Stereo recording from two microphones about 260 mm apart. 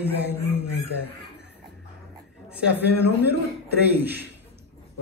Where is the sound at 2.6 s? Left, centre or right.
Centre.